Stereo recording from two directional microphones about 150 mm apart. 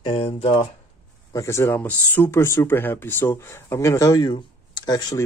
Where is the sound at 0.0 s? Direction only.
40° left (ahead or behind).